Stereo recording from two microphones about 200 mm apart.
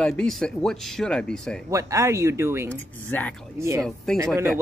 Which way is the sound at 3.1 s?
10° left (ahead or behind).